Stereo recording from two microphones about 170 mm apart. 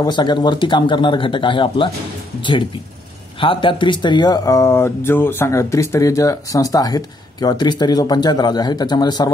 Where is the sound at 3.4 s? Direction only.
30° left (ahead or behind).